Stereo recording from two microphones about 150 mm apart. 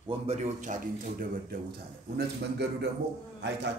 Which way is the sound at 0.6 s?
65° right (ahead or behind).